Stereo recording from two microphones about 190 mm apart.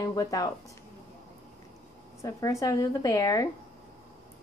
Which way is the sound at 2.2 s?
15° left (ahead or behind).